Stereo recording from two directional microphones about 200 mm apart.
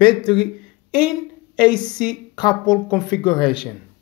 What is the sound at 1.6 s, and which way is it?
Speech, 20° left (ahead or behind).